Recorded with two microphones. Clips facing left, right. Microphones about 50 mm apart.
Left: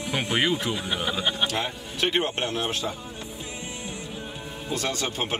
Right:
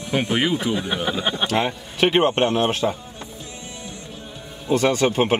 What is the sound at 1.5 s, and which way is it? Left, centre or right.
Speech, right.